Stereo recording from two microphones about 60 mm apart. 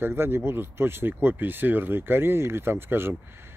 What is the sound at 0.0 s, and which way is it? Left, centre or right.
Speech, right.